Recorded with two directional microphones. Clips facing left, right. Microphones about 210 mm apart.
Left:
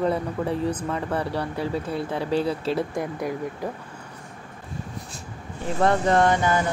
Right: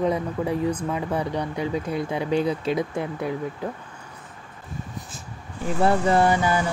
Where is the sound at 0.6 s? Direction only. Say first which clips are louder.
Right 1 dB; 10° right (ahead or behind).